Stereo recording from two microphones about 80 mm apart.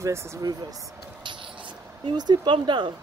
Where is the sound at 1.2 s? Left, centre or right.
Right.